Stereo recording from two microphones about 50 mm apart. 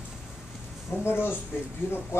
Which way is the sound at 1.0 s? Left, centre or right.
Left.